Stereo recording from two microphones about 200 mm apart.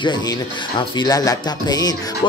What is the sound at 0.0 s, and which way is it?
Speech, 20° left (ahead or behind).